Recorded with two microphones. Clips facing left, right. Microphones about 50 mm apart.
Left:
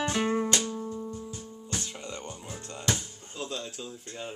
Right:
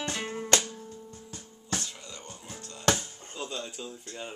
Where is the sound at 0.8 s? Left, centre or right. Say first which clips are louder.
Left 9 dB; left.